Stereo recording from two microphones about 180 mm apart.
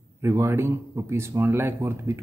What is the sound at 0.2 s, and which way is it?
Speech, 15° right (ahead or behind).